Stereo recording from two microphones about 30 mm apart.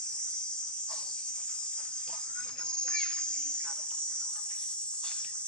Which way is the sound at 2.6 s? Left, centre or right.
Left.